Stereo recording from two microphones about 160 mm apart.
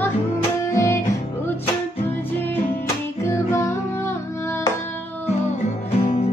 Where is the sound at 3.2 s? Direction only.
15° left (ahead or behind).